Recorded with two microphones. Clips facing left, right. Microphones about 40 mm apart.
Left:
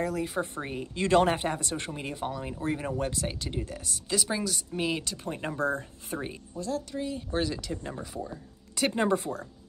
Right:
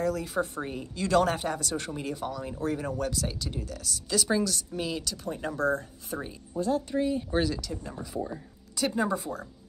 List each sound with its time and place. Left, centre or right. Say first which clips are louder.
0.0 s speech: right 1 dB; centre
0.9 s speech: left 1 dB; left
4.1 s speech: right 3 dB; centre; by 6.1 s left
6.5 s speech: right 6 dB; right
7.0 s speech: right 4 dB; centre
7.6 s speech: left 1 dB; left
9.1 s speech: left 3 dB; centre